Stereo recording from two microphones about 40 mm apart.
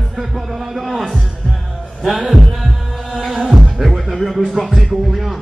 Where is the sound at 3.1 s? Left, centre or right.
Centre.